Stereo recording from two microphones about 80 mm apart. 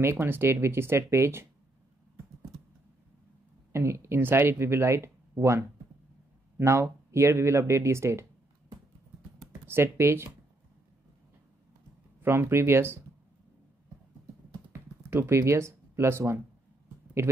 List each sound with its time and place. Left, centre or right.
0.0 s speech: right
3.7 s speech: right
9.5 s speech: right
12.2 s speech: right
14.7 s a sound: right